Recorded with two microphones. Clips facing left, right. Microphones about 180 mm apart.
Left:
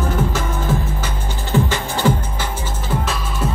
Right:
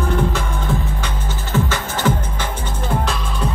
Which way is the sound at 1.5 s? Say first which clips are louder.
Left 2 dB; 15° left (ahead or behind).